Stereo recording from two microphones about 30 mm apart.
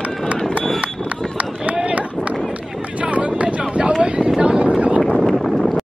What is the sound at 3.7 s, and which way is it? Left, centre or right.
Wind noise, right.